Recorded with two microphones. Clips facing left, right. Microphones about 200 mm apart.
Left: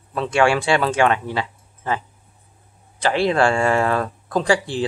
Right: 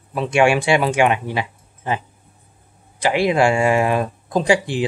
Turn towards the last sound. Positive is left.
turn(degrees=-15)  # may be behind; listen again after turning